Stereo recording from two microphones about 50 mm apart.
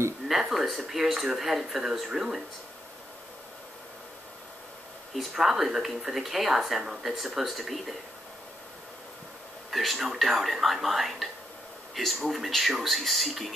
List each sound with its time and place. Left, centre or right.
0.3 s speech: centre
5.1 s speech: centre
9.7 s speech: centre